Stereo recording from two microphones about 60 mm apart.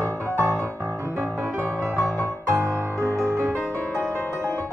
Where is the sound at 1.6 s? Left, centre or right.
Right.